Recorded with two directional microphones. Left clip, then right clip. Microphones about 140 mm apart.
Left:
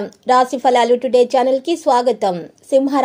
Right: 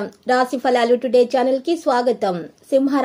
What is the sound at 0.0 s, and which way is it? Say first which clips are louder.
A woman's voice: left 4 dB; 25° left (ahead or behind).